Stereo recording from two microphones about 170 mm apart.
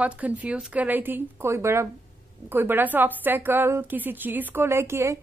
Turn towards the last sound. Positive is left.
turn(degrees=-15)  # may be behind; listen again after turning